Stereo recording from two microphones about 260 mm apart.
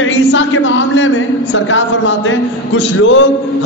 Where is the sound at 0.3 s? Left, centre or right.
Left.